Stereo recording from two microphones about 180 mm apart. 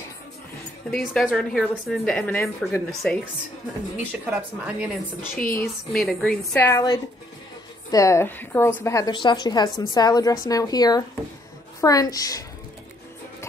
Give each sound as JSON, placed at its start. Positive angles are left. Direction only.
{"t": 0.8, "sound": "a woman's voice", "side_deg": 5}
{"t": 2.9, "sound": "a woman's voice", "side_deg": 0}
{"t": 6.5, "sound": "a woman's voice", "side_deg": 15}